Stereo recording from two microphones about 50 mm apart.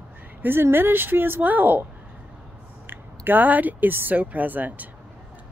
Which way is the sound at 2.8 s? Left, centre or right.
Right.